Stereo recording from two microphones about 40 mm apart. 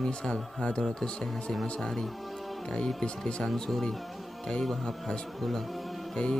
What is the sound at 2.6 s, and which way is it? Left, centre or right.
Speech, centre.